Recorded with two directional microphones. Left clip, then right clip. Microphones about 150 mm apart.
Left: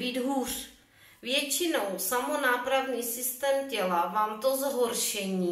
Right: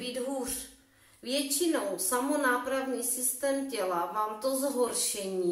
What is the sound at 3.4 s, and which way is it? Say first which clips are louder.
A woman's voice: left 3 dB; 20° left (ahead or behind).